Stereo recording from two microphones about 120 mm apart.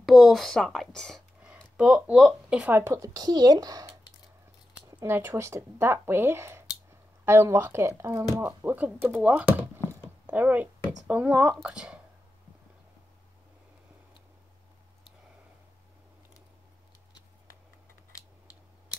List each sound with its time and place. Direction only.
0.0 s speech: centre (ahead or behind)
1.8 s speech: 10° right (ahead or behind)
2.7 s speech: 25° right (ahead or behind)
5.0 s a woman's voice: 20° right (ahead or behind)